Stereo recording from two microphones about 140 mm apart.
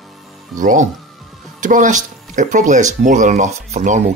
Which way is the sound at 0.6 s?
70° right (ahead or behind).